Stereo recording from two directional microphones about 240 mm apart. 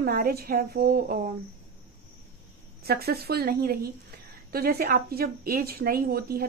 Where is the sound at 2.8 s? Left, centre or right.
Right.